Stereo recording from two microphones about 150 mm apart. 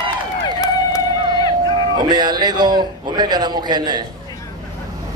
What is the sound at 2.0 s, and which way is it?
A man's voice, 30° right (ahead or behind).